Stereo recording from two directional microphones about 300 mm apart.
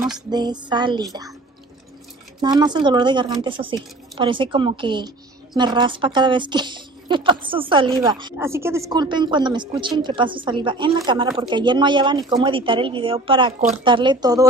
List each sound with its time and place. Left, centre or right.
0.3 s a woman's voice: centre
2.4 s a woman's voice: centre